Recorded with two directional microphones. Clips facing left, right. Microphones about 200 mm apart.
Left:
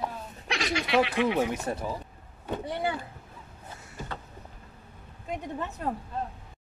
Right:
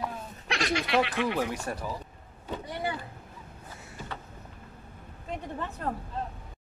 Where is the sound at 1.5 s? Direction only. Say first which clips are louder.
Left 3 dB; 20° left (ahead or behind).